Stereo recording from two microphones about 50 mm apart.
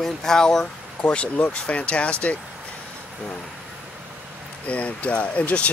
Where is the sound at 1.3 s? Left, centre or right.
Left.